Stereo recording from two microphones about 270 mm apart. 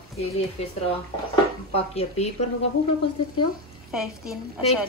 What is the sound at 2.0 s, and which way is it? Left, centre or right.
Speech, left.